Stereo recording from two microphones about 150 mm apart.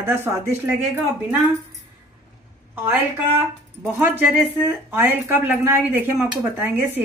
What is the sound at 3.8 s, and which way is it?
Speech, 10° right (ahead or behind).